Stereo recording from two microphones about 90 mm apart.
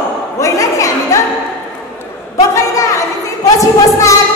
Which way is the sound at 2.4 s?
35° left (ahead or behind).